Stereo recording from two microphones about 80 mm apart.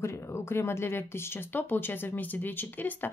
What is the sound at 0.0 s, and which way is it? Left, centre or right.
Speech, left.